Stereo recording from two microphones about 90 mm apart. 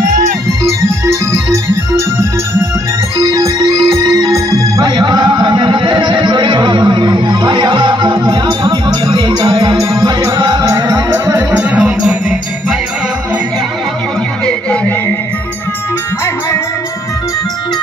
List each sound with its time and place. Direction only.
0.5 s organ: 35° right (ahead or behind)
3.2 s music: 40° right (ahead or behind)
4.8 s a sound: 50° right (ahead or behind)
9.8 s music: 35° right (ahead or behind)
10.0 s music: 50° right (ahead or behind)
11.1 s music: 25° right (ahead or behind)
14.4 s a sound: 15° left (ahead or behind)